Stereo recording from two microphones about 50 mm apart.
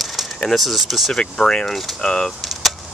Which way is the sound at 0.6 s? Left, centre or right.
Centre.